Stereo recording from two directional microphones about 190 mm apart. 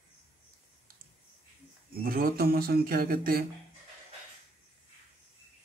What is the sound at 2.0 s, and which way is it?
Speech, 50° right (ahead or behind).